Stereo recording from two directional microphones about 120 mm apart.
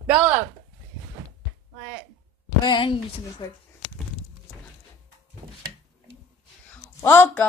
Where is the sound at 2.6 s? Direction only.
40° left (ahead or behind).